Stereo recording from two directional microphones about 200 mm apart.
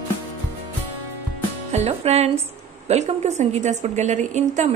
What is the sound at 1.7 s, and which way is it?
A woman's voice, 30° right (ahead or behind).